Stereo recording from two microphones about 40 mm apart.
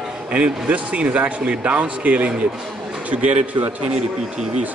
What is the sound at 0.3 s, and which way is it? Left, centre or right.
A man's voice, right.